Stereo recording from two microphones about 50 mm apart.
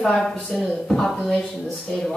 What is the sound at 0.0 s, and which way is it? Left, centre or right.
Speech, centre.